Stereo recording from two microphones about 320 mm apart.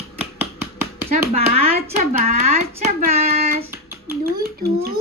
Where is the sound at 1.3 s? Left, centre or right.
Centre.